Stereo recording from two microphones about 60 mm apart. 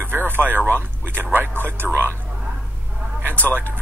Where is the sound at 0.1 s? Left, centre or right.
Right.